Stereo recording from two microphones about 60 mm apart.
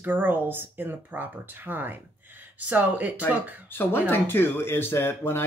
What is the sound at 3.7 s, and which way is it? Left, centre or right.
Speech, left.